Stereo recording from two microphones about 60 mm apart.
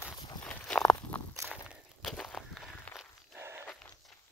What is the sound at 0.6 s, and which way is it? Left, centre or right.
Walk, centre.